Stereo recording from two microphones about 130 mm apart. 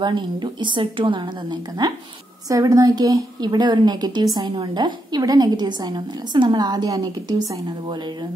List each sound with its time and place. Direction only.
0.0 s a woman's voice: 35° right (ahead or behind)